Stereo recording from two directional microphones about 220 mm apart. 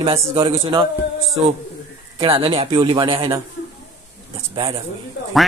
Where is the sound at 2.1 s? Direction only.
25° right (ahead or behind).